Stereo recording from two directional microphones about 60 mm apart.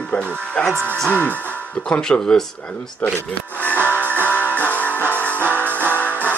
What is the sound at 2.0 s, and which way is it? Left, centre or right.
Speech, centre.